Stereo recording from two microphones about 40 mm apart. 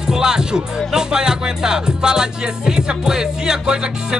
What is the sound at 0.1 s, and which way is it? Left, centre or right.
Speech, centre.